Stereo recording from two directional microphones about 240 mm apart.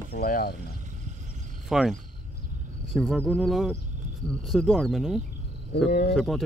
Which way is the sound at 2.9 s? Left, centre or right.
Centre.